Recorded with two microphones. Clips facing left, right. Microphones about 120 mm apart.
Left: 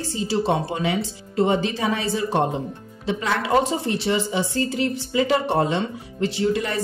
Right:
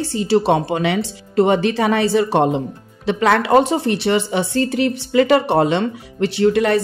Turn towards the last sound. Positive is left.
turn(degrees=-70)  # may be behind; listen again after turning